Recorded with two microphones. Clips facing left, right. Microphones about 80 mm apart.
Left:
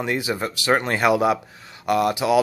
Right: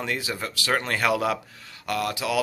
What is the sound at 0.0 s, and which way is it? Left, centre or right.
Speech, left.